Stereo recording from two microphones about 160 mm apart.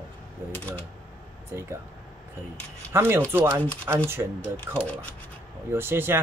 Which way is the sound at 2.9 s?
15° right (ahead or behind).